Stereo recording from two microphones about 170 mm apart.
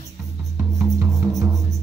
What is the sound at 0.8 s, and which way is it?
Music, 15° right (ahead or behind).